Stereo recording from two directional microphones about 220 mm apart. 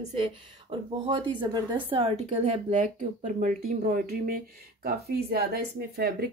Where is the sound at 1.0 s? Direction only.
20° right (ahead or behind).